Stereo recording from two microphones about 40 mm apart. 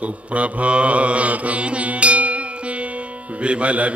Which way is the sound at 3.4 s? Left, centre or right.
Right.